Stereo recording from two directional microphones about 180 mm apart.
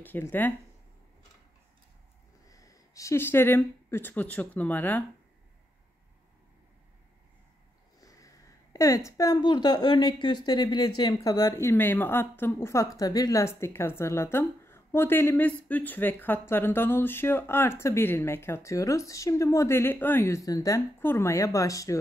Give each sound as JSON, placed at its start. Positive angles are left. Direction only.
{"t": 0.0, "sound": "speech", "side_deg": 10}
{"t": 2.5, "sound": "speech", "side_deg": 20}
{"t": 8.0, "sound": "speech", "side_deg": 20}